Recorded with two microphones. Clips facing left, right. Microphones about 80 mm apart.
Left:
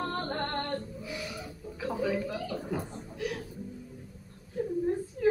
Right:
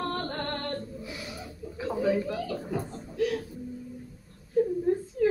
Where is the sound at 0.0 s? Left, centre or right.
Centre.